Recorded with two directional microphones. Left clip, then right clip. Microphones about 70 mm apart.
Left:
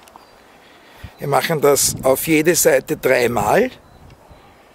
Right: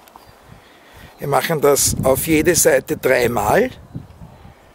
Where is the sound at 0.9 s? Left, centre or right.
Centre.